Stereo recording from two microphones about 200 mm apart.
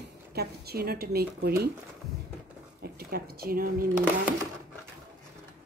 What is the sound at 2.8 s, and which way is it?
A woman's voice, 50° right (ahead or behind).